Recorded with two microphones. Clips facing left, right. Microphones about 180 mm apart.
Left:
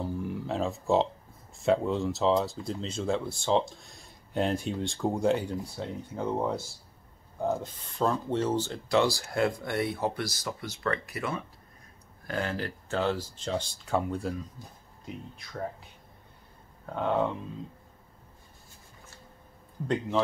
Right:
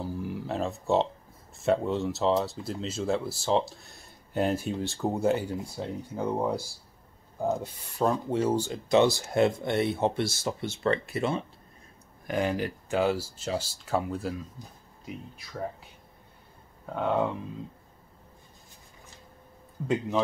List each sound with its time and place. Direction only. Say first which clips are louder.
0.0 s a sound: left 1 dB; centre (ahead or behind)
1.6 s speech: even; centre (ahead or behind); by 11.4 s 25° right (ahead or behind)
12.3 s speech: right 4 dB; 15° right (ahead or behind)
16.9 s speech: right 1 dB; 5° right (ahead or behind)